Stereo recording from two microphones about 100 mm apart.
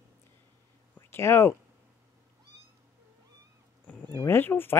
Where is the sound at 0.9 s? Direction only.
25° left (ahead or behind).